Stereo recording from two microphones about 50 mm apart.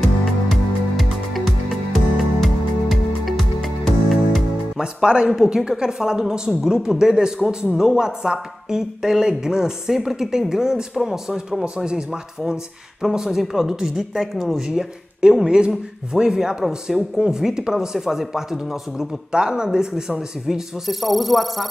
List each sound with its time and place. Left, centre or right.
0.5 s music: centre
4.7 s speech: centre
5.4 s a woman's voice: centre
13.0 s speech: centre